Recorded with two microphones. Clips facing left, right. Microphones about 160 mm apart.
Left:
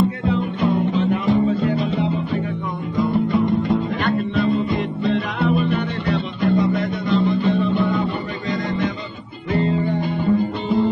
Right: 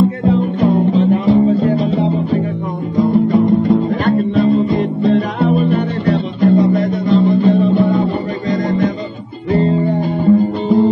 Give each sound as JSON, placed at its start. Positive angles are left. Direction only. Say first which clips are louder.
{"t": 0.2, "sound": "music", "louder": "right 7 dB", "side_deg": -40}
{"t": 9.5, "sound": "guitar", "louder": "right 6 dB", "side_deg": -35}